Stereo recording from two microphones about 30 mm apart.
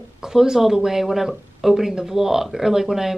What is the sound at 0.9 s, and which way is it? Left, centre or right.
Speech, centre.